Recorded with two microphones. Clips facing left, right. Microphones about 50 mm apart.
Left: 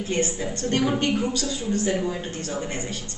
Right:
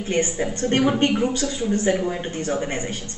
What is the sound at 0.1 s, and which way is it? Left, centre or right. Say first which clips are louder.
A woman's voice: right 4 dB; right.